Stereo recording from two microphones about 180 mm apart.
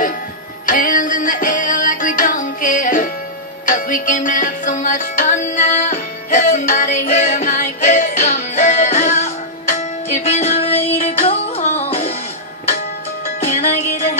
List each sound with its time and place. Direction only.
0.7 s music: 50° left (ahead or behind)
13.4 s music: 40° left (ahead or behind)